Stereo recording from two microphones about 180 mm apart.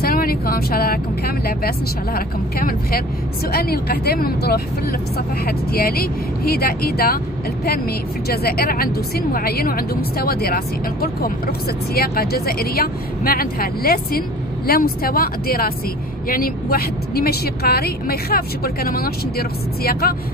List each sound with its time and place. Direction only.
0.0 s vehicle: 55° left (ahead or behind)
2.1 s a woman's voice: 55° left (ahead or behind)
8.3 s a woman's voice: 55° left (ahead or behind)